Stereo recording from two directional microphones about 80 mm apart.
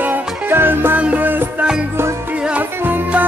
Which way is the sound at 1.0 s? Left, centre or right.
Centre.